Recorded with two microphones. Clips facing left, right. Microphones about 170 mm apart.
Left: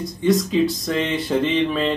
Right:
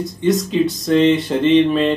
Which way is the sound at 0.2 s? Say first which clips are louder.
Right 1 dB; centre (ahead or behind).